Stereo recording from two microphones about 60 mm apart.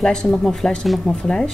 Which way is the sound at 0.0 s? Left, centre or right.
Centre.